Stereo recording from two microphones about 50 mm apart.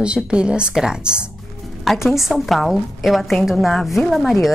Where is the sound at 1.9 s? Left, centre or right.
Centre.